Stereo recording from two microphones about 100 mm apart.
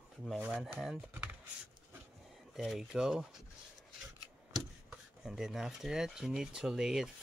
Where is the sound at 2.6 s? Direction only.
5° right (ahead or behind).